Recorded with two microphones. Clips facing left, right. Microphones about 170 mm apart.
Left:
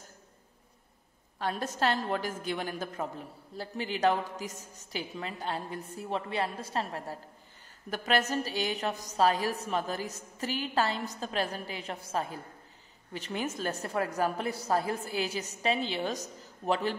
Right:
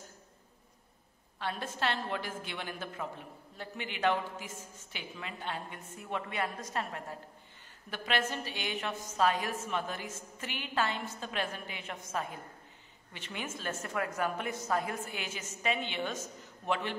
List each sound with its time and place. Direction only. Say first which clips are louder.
1.4 s a woman's voice: left 5 dB; 40° left (ahead or behind)